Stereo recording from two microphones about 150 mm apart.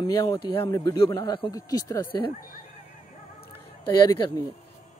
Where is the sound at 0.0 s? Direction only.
20° left (ahead or behind).